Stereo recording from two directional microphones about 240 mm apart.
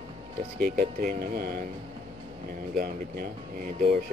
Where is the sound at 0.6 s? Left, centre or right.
Right.